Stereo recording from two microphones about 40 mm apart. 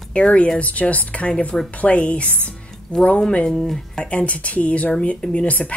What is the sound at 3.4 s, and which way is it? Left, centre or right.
Speech, centre.